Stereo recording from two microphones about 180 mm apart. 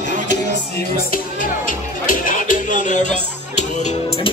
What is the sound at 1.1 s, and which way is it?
Music, 50° left (ahead or behind).